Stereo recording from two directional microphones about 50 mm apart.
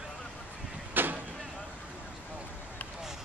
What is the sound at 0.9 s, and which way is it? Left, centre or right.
Vehicle, right.